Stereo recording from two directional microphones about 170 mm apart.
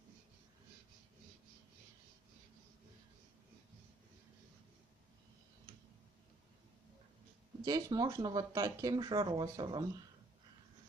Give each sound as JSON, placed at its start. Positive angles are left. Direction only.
{"t": 7.6, "sound": "speech", "side_deg": -25}